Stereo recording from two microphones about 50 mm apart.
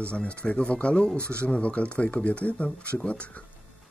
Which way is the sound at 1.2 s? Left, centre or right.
Right.